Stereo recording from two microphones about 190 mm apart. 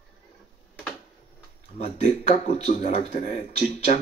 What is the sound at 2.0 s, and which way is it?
Speech, 35° left (ahead or behind).